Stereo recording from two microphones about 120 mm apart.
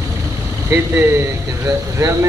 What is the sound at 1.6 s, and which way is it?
Speech, 25° right (ahead or behind).